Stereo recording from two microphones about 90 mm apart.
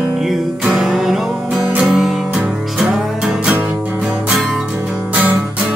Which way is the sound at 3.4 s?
15° right (ahead or behind).